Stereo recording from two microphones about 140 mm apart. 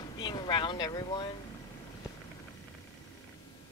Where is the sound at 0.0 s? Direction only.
30° left (ahead or behind).